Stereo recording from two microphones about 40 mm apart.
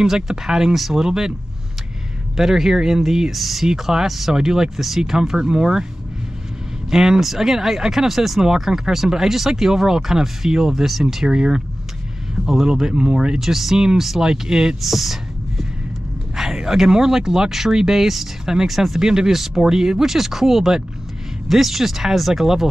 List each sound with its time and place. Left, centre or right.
0.0 s speech: centre
2.3 s speech: centre
6.9 s speech: centre
12.4 s speech: centre
12.9 s speech: right
13.4 s speech: centre
14.8 s a sound: centre
16.3 s speech: centre